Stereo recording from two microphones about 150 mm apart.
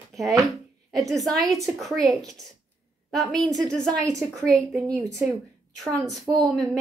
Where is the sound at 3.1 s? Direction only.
Centre (ahead or behind).